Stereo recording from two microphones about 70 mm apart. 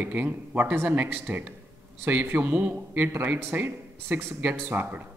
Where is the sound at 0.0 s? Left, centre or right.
Right.